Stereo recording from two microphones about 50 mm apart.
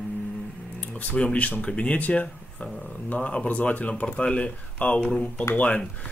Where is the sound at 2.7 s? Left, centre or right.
Centre.